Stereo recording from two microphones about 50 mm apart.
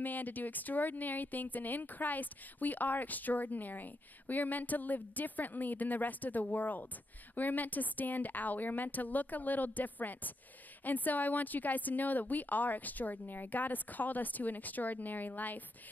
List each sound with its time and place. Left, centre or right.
0.0 s speech: left